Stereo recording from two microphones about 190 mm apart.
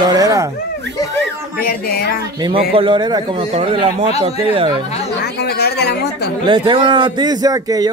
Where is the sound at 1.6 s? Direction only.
50° left (ahead or behind).